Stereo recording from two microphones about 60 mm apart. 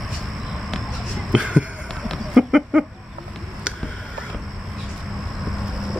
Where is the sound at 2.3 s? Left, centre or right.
Centre.